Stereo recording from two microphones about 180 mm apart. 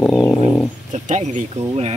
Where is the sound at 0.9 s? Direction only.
40° right (ahead or behind).